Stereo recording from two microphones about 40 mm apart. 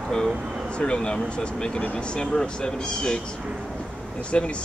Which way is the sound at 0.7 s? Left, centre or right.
Left.